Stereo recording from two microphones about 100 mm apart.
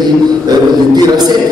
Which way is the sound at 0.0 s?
45° right (ahead or behind).